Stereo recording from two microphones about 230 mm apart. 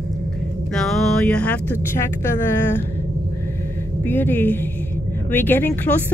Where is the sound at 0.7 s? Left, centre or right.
Centre.